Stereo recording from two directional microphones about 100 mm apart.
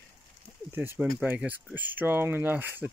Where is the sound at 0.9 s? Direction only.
15° right (ahead or behind).